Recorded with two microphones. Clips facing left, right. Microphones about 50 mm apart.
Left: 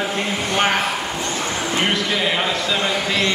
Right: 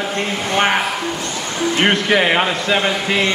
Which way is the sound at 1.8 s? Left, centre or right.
Right.